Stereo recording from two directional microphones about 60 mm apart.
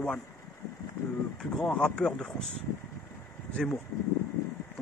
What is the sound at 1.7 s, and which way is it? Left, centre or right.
Speech, centre.